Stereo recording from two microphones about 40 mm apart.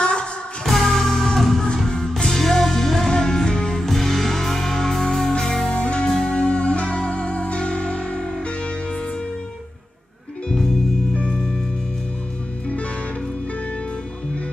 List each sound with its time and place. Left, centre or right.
0.0 s music: left
0.7 s music: centre
1.9 s music: centre
5.7 s music: left
10.5 s music: centre
11.1 s music: left